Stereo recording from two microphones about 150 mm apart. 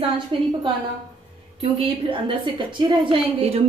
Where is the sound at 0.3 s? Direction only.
35° right (ahead or behind).